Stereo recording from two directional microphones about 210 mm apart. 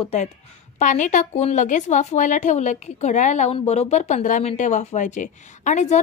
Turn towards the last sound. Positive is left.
turn(degrees=35)  # may be behind; listen again after turning